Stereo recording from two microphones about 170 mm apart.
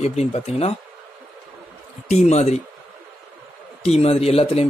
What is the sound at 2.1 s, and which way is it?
Speech, 40° left (ahead or behind).